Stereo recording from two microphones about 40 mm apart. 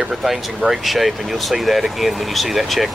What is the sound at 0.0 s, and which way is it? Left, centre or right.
Speech, centre.